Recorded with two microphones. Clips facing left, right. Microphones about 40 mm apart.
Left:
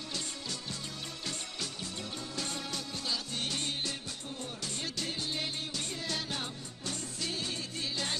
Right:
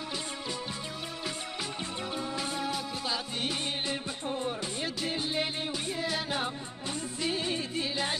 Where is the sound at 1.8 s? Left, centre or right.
Right.